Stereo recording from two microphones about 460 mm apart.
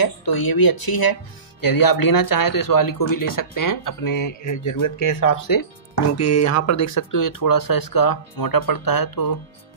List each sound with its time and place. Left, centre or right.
0.0 s speech: left
6.1 s speech: left